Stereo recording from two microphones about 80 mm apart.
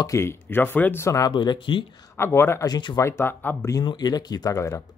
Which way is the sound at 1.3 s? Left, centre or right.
Left.